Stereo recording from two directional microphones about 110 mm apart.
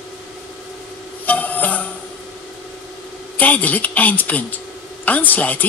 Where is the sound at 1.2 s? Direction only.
15° left (ahead or behind).